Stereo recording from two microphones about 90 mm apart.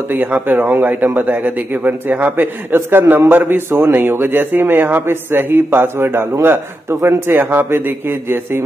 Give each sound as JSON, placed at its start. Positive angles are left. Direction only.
{"t": 0.1, "sound": "speech", "side_deg": -20}